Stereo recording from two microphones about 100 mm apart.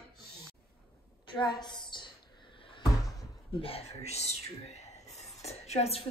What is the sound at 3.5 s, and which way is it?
A woman's voice, 70° left (ahead or behind).